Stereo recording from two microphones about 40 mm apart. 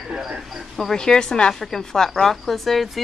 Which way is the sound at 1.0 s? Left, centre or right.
Centre.